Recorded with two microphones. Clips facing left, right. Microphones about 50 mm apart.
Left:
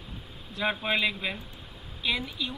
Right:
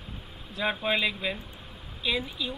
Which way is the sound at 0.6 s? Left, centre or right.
Centre.